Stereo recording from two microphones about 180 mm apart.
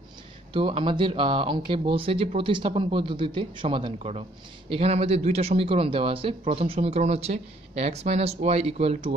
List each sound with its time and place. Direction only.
0.5 s speech: 30° right (ahead or behind)